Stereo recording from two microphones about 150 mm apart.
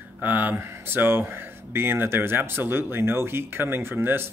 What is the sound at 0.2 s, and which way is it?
Speech, 10° right (ahead or behind).